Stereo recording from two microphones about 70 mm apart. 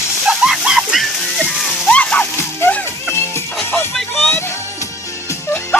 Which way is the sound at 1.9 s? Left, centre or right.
Centre.